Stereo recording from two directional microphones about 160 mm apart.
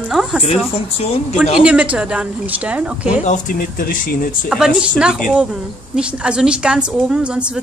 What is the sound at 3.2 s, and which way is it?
Speech, 55° left (ahead or behind).